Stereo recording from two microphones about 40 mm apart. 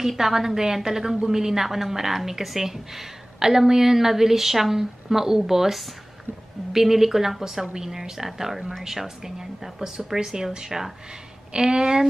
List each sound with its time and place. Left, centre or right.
0.2 s a woman's voice: centre